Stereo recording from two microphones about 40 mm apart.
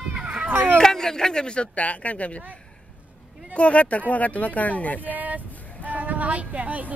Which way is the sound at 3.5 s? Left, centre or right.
Left.